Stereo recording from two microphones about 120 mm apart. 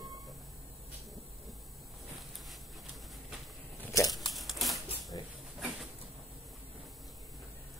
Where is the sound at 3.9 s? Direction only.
30° left (ahead or behind).